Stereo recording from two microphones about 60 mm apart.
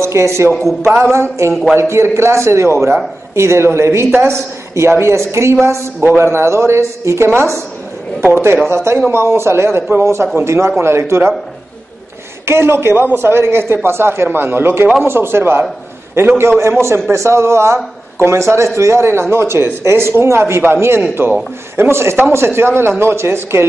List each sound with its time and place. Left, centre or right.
0.0 s a woman's voice: right
0.6 s speech: centre
1.1 s a woman's voice: right
1.5 s speech: centre
1.8 s a woman's voice: right
8.6 s a woman's voice: right
12.4 s a woman's voice: right